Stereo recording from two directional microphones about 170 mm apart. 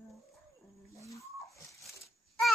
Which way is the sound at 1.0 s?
20° left (ahead or behind).